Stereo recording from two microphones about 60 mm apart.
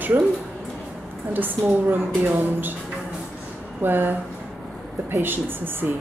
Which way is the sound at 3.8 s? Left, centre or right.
Right.